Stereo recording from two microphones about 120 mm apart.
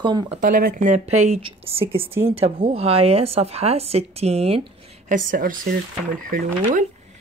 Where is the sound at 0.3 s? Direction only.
90° right; by 2.0 s 50° right (ahead or behind).